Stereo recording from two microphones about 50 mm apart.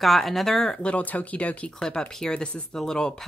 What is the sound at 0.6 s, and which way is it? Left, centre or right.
Speech, left.